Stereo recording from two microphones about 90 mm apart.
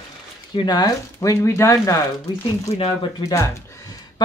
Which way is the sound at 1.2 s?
35° left (ahead or behind).